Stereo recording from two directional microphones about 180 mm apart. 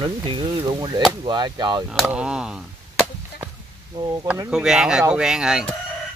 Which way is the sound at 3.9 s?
25° right (ahead or behind).